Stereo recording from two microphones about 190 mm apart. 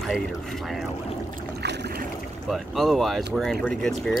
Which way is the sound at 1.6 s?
60° right (ahead or behind).